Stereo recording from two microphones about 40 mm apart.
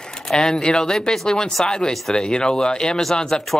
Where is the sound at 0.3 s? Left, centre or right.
Centre.